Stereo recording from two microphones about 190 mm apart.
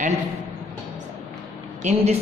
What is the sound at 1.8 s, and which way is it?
Speech, 35° right (ahead or behind).